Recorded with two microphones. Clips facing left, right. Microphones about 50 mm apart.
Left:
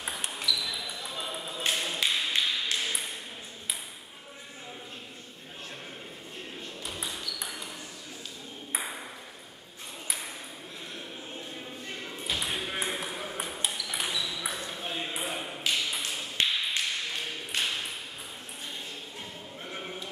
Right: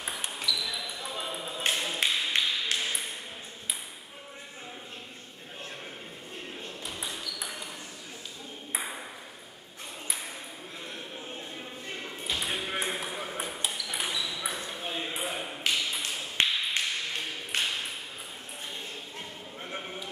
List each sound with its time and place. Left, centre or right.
0.0 s a sound: centre
0.8 s basketball bounce: centre
1.7 s tap: centre
2.7 s ping: right
6.8 s ping: centre
8.7 s ping: centre
11.5 s a sound: centre
12.4 s ping: centre
15.7 s tap: centre
16.4 s tap: right
17.6 s ping: centre
19.8 s a sound: centre